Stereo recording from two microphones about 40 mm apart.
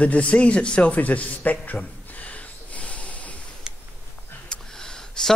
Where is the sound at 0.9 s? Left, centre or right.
Left.